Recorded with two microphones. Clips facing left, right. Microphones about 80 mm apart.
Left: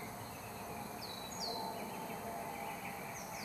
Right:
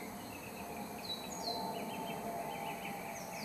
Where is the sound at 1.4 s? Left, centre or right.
Centre.